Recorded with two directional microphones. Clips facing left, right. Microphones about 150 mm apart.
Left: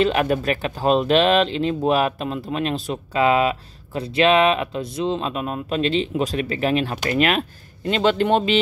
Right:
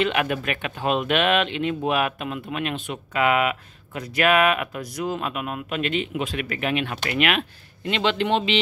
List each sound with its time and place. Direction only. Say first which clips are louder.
0.0 s speech: left 4 dB; 35° left (ahead or behind)